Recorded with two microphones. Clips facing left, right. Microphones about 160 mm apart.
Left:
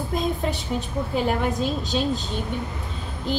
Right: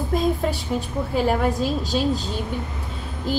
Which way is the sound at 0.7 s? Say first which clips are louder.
Right 2 dB; centre (ahead or behind).